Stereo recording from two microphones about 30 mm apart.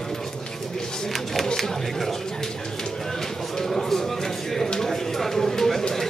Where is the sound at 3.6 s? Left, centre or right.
Centre.